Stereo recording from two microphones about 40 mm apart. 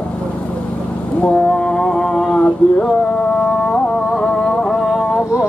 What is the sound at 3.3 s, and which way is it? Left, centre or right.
Music, left.